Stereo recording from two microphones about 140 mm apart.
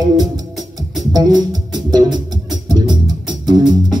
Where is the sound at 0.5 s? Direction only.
Centre (ahead or behind).